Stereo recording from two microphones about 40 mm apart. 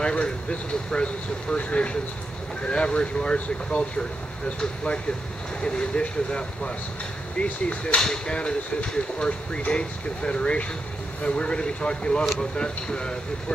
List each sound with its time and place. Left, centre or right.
0.0 s speech: left
5.6 s speech: left